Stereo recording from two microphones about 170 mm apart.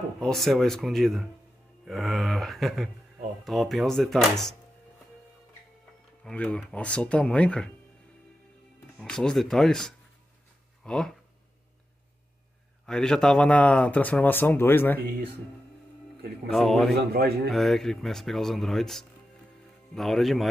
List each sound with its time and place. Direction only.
0.2 s speech: centre (ahead or behind)
6.2 s speech: 5° left (ahead or behind)
8.9 s speech: 5° left (ahead or behind)
12.8 s speech: 5° left (ahead or behind)
16.5 s speech: centre (ahead or behind)
16.9 s speech: 65° right (ahead or behind)
17.5 s speech: centre (ahead or behind)